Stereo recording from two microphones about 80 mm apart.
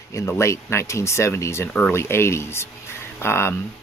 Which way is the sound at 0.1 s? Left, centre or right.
Left.